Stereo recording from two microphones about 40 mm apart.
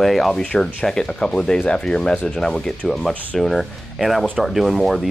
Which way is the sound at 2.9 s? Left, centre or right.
Centre.